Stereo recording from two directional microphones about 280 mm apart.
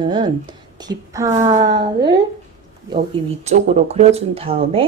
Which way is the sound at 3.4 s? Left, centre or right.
Right.